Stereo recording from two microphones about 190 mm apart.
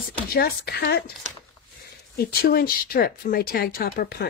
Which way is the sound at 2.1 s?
55° left (ahead or behind).